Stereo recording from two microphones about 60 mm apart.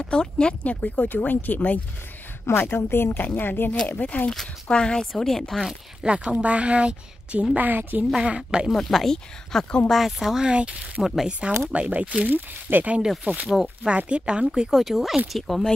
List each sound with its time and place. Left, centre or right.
0.0 s speech: centre
0.8 s speech: left
2.4 s speech: left
4.3 s speech: centre
5.1 s speech: centre
6.0 s speech: centre
7.5 s speech: right
8.4 s speech: centre
8.7 s speech: centre
11.0 s speech: centre
11.7 s speech: right
13.1 s speech: centre
13.8 s speech: centre